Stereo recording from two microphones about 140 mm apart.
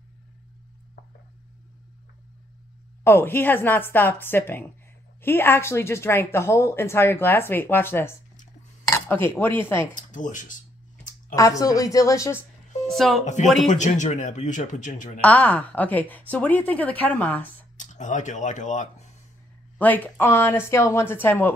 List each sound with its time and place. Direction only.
3.0 s speech: 15° left (ahead or behind)
9.9 s speech: 65° left (ahead or behind)
11.3 s a woman's voice: 25° left (ahead or behind)
12.8 s speech: centre (ahead or behind)
13.2 s speech: 60° left (ahead or behind)
15.1 s speech: 10° left (ahead or behind)
17.7 s speech: 60° left (ahead or behind)
19.8 s speech: 10° left (ahead or behind)